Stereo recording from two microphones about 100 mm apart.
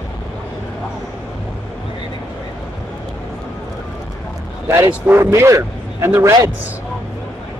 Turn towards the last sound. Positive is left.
turn(degrees=-25)  # may be behind; listen again after turning